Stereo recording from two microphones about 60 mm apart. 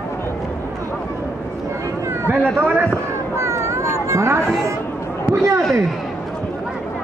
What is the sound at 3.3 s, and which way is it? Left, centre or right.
Cat, right.